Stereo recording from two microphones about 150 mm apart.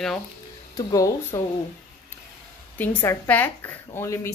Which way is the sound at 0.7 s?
25° left (ahead or behind).